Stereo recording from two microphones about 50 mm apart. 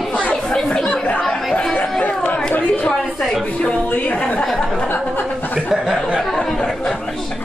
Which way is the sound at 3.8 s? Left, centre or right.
Left.